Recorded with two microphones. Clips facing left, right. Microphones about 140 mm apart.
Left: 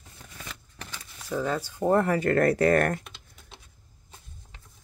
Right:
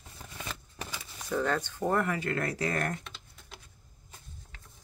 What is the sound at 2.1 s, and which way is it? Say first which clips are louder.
Speech: left 10 dB; 50° left (ahead or behind).